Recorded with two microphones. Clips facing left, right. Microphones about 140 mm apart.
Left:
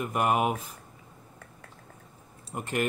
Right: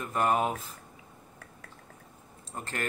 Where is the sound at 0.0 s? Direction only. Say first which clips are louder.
Left 1 dB; 15° left (ahead or behind).